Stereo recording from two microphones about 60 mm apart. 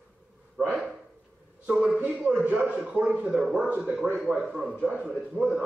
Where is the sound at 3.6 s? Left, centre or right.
Right.